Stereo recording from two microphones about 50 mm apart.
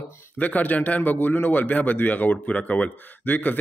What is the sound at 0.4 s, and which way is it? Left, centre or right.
A man's voice, left.